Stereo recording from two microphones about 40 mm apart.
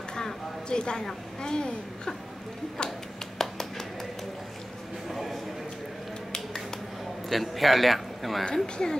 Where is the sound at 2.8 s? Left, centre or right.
Centre.